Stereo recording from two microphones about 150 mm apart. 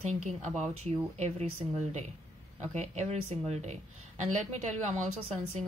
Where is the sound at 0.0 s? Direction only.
50° right (ahead or behind).